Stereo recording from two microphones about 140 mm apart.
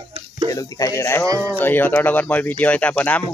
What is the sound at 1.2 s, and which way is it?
Speech, 25° right (ahead or behind).